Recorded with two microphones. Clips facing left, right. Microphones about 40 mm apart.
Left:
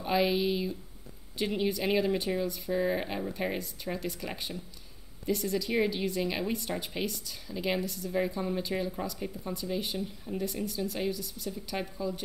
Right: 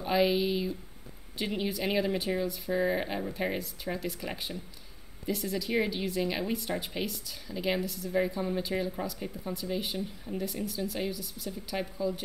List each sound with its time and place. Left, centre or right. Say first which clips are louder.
0.0 s speech: right 1 dB; centre